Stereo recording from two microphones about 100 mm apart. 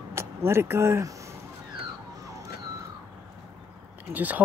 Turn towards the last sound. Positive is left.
turn(degrees=-15)  # may be behind; listen again after turning